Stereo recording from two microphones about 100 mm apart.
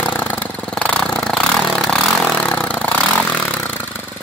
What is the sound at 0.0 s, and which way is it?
Vehicle, 15° left (ahead or behind).